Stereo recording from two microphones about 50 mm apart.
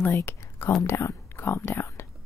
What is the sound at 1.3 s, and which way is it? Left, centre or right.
Speech, left.